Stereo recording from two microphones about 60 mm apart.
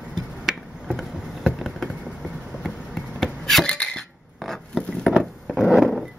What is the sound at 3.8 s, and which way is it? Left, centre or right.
Dishes, centre.